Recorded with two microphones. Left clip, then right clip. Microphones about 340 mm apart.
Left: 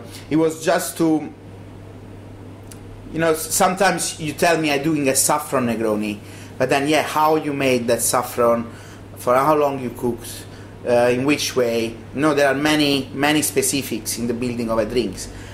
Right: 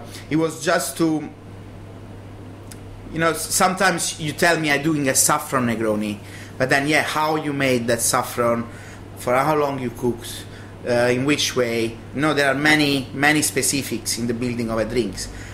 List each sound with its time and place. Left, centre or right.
0.3 s speech: right
3.1 s a man's voice: right
10.9 s speech: right